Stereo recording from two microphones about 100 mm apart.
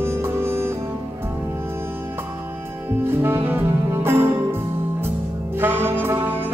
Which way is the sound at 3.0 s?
20° right (ahead or behind).